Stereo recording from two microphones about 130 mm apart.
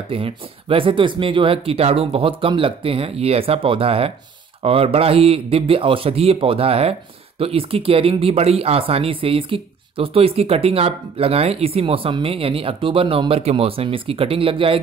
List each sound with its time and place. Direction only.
0.1 s a man's voice: 45° right (ahead or behind)